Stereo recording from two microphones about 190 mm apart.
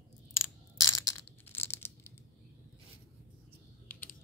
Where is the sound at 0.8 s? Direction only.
15° left (ahead or behind).